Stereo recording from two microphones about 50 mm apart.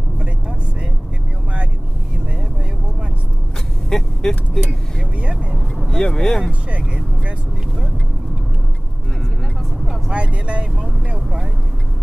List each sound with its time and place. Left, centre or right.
3.9 s vehicle: centre
5.3 s vehicle: centre
5.9 s speech: centre
6.7 s vehicle: right
10.1 s speech: right